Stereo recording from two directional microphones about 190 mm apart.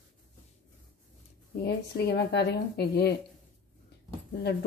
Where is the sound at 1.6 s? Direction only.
60° left (ahead or behind).